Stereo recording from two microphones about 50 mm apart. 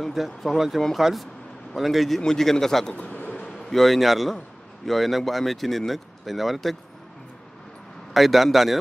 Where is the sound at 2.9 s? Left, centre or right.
Left.